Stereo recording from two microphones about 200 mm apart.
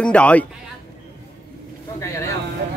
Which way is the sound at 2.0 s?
15° left (ahead or behind).